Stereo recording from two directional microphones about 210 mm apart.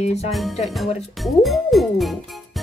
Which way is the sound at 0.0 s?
30° left (ahead or behind).